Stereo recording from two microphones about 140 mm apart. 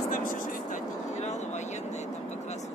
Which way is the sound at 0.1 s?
70° left (ahead or behind).